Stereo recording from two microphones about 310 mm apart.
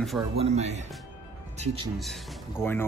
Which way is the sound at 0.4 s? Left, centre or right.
Right.